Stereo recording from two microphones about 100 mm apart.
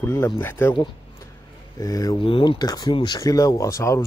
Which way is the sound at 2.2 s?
60° left (ahead or behind).